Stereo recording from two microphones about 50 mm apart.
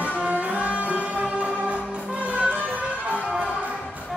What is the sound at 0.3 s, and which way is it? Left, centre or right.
Music, right.